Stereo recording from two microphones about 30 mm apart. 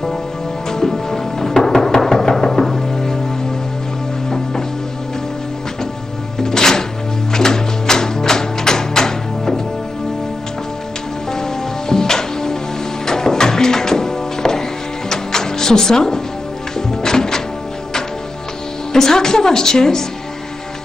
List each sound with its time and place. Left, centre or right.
0.7 s music: centre
6.4 s music: centre
11.9 s music: centre
18.9 s a woman's voice: centre